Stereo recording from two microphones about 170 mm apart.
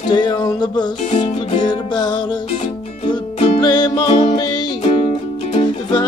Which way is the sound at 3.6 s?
25° left (ahead or behind).